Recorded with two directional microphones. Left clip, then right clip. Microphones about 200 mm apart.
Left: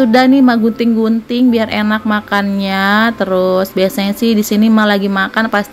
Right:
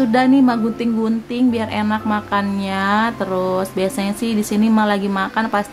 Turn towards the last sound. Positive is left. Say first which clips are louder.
# left 5 dB
turn(degrees=20)  # may be behind; listen again after turning